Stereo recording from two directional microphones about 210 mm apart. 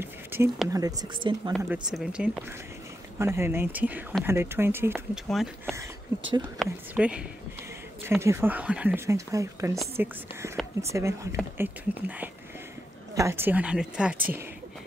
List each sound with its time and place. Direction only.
0.0 s speech: 10° right (ahead or behind)
1.6 s speech: 10° right (ahead or behind)
6.6 s speech: 5° right (ahead or behind)